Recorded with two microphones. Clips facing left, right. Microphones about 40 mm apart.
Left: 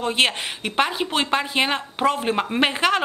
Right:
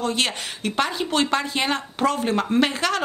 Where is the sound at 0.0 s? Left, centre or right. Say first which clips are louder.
Left 3 dB; left.